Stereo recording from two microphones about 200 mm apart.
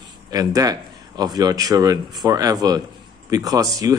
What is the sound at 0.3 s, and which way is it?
Speech, 20° right (ahead or behind).